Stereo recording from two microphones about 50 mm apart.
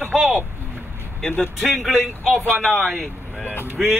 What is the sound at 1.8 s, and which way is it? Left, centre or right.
Speech, centre.